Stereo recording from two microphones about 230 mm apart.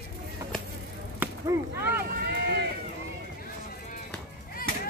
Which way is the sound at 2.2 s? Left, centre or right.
Right.